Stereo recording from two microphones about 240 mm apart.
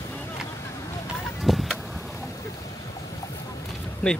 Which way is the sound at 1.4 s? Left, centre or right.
Centre.